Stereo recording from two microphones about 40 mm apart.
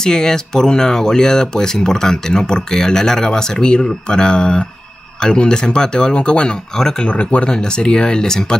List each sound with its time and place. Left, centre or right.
0.0 s speech: centre
7.1 s speech: left
7.5 s speech: left